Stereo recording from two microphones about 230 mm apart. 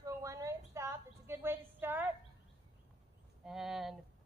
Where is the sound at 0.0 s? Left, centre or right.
Centre.